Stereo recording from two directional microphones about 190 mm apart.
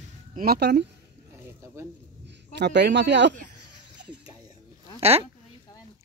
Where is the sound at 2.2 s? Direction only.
65° right (ahead or behind).